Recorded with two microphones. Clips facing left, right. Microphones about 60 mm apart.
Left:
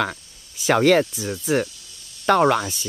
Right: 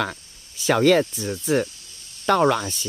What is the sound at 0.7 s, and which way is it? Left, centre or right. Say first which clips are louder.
Speech: left 1 dB; centre.